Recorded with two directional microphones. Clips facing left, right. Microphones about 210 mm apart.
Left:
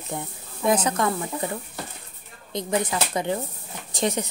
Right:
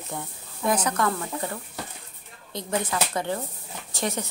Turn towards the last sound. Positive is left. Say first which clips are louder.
# left 4 dB
turn(degrees=15)  # may be behind; listen again after turning